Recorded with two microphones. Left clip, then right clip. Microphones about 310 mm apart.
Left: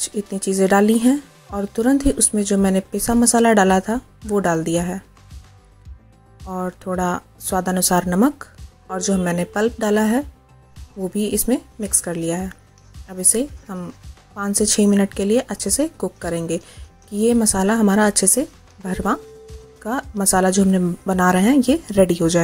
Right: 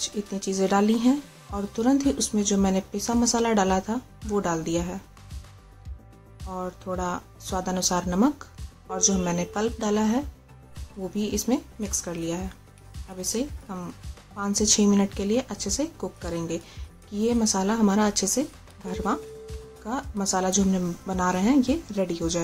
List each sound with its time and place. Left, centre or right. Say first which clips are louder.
0.4 s speech: left 7 dB; centre
6.5 s speech: left 6 dB; centre